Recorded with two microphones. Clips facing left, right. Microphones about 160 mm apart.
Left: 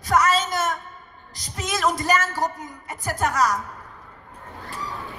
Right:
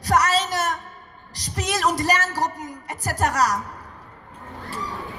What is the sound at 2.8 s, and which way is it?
Speech, 35° right (ahead or behind).